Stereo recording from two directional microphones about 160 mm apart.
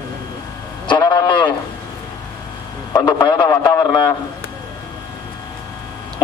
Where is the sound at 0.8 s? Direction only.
30° left (ahead or behind).